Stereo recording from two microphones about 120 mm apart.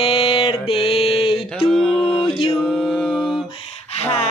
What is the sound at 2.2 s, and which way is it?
Mantra, 50° left (ahead or behind).